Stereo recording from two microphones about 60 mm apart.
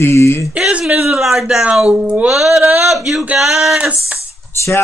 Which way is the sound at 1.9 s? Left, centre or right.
Right.